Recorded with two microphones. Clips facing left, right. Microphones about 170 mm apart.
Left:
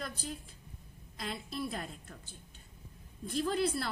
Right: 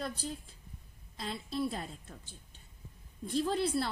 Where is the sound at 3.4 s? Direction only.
30° right (ahead or behind).